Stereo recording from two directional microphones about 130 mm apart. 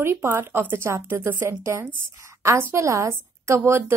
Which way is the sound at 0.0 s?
20° right (ahead or behind).